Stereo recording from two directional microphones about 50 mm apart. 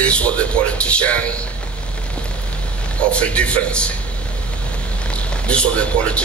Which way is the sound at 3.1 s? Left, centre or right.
Left.